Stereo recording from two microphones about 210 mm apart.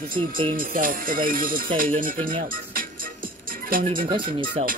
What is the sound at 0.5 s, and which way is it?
Speech, 40° right (ahead or behind).